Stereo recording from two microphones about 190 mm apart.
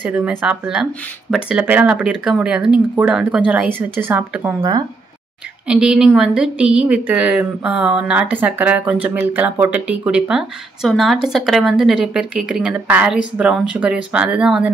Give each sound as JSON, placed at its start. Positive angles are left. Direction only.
{"t": 0.0, "sound": "speech", "side_deg": -5}
{"t": 5.7, "sound": "speech", "side_deg": -5}